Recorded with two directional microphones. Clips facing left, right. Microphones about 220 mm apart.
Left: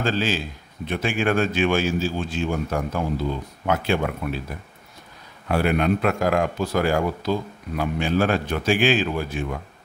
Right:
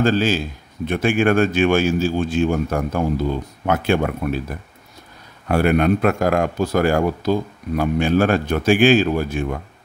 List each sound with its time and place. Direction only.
0.0 s speech: 45° right (ahead or behind)
5.5 s speech: 50° right (ahead or behind)